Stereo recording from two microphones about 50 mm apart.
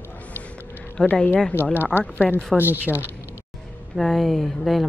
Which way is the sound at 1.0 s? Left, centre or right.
Left.